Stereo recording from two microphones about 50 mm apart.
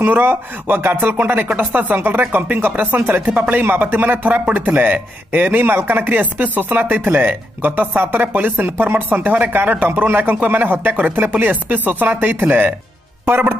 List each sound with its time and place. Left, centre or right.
0.0 s speech: right
3.6 s speech: right